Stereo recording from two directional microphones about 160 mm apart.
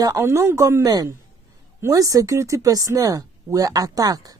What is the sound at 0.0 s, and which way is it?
A woman's voice, 20° right (ahead or behind).